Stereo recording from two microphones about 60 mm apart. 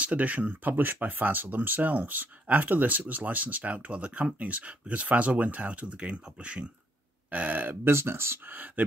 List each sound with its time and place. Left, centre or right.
0.0 s speech: right
8.8 s speech: right